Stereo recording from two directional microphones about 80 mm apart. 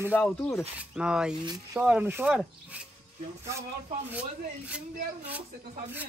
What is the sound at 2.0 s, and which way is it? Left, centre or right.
Speech, right.